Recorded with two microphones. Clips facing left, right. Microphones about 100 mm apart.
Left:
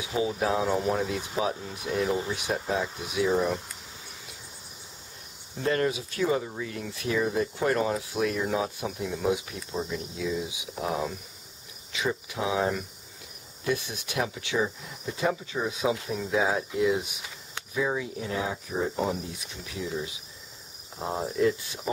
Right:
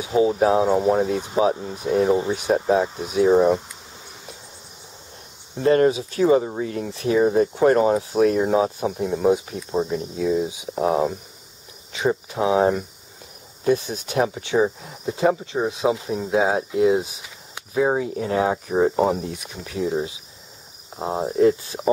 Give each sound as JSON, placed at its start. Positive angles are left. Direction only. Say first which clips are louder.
{"t": 0.3, "sound": "speech", "louder": "right 8 dB", "side_deg": -35}
{"t": 5.6, "sound": "speech", "louder": "right 9 dB", "side_deg": -35}
{"t": 20.9, "sound": "speech", "louder": "right 6 dB", "side_deg": -25}